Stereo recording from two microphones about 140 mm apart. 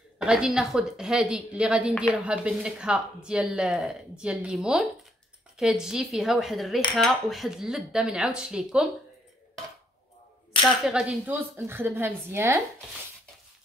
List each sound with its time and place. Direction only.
0.2 s a woman's voice: 5° right (ahead or behind)
10.6 s a woman's voice: 5° right (ahead or behind)